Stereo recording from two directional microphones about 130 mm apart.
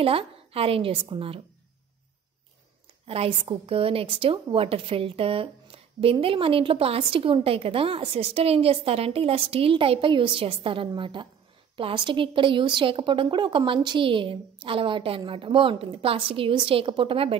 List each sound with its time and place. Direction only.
0.0 s a woman's voice: 45° right (ahead or behind)
3.1 s a woman's voice: 45° right (ahead or behind)